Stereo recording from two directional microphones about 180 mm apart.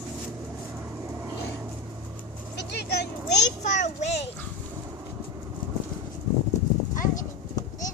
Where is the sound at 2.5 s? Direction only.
65° left (ahead or behind).